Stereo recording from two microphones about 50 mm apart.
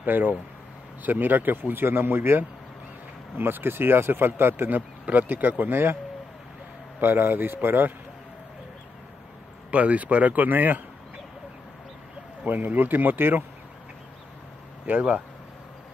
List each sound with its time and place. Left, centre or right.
0.0 s a man's voice: right
4.7 s a man's voice: right
7.0 s a man's voice: right
9.7 s speech: right
12.4 s speech: right
14.9 s speech: right